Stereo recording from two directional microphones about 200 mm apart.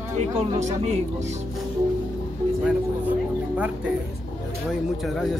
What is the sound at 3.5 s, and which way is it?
Speech, 5° right (ahead or behind).